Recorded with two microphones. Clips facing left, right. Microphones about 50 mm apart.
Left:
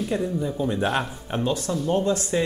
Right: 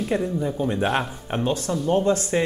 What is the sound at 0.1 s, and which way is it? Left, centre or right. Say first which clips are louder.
Speech: right 3 dB; right.